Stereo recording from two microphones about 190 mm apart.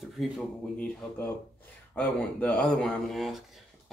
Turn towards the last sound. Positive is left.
turn(degrees=0)  # may be behind; listen again after turning